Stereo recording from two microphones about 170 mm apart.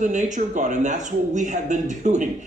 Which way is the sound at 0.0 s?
45° right (ahead or behind).